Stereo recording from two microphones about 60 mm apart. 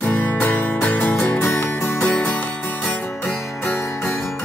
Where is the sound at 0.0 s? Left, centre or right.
Left.